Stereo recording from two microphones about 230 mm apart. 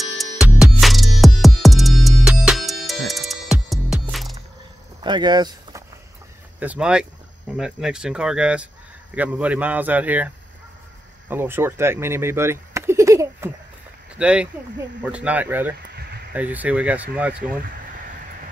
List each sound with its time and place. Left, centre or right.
0.0 s music: centre
5.0 s vehicle: centre
6.6 s a man's voice: centre